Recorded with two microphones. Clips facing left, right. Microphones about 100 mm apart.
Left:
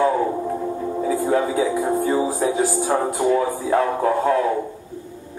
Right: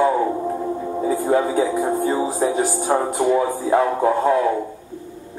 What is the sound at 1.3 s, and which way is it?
Speech, 15° right (ahead or behind).